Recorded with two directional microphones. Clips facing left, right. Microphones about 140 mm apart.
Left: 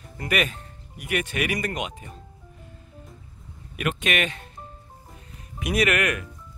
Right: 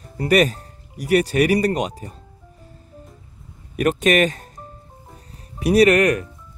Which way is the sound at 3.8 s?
40° right (ahead or behind).